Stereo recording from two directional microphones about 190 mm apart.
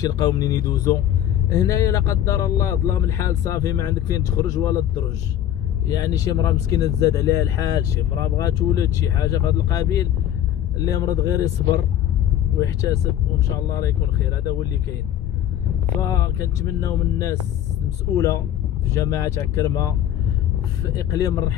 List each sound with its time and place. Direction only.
0.0 s speech: 20° left (ahead or behind)
5.9 s speech: 20° left (ahead or behind)
16.0 s speech: 15° left (ahead or behind)
17.8 s speech: 15° left (ahead or behind)
20.9 s speech: 20° left (ahead or behind)